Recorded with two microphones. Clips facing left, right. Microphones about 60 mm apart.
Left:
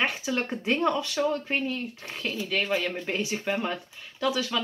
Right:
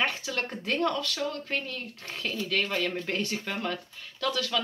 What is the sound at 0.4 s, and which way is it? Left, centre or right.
Speech, centre.